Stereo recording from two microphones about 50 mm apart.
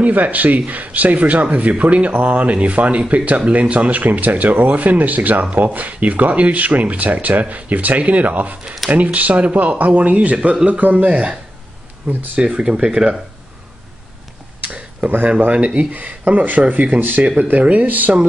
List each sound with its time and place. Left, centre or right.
0.0 s speech: right
14.6 s a sound: right
15.2 s speech: right